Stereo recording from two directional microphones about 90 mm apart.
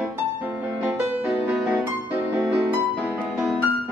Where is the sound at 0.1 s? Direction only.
15° right (ahead or behind).